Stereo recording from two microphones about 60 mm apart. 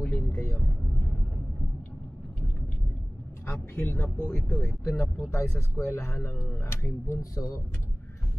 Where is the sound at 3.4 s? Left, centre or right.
Left.